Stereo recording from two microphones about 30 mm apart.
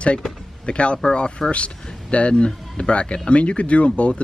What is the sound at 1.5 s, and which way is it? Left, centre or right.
Speech, left.